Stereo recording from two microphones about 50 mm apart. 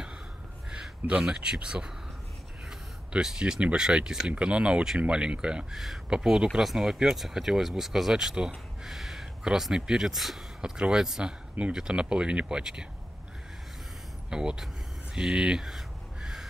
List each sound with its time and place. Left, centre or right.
0.7 s a sound: centre
1.3 s speech: centre
3.1 s speech: centre
5.7 s speech: centre
6.0 s speech: centre
8.8 s a sound: centre
9.4 s speech: centre
10.6 s speech: centre
14.3 s speech: centre
15.1 s crow: centre